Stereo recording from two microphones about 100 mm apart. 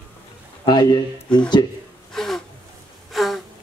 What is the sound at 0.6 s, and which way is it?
Speech, 45° left (ahead or behind).